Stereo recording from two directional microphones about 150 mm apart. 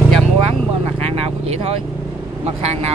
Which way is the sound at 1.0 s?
45° right (ahead or behind).